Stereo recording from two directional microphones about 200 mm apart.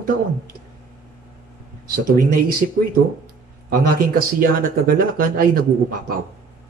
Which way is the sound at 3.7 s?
45° right (ahead or behind).